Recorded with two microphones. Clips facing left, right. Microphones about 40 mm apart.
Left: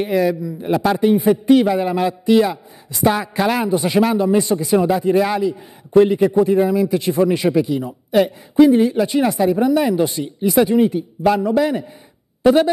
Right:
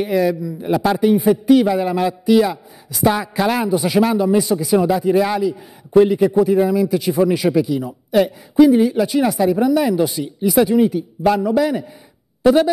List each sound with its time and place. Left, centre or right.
0.0 s speech: centre
7.1 s speech: centre
7.3 s a woman's voice: centre